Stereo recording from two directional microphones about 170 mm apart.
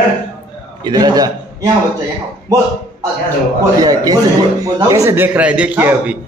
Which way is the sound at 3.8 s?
20° right (ahead or behind).